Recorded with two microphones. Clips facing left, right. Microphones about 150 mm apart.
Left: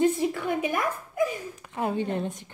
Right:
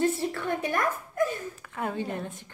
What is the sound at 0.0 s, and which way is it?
Speech, 15° left (ahead or behind).